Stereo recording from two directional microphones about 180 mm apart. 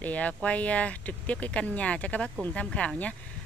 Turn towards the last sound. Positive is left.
turn(degrees=5)  # may be behind; listen again after turning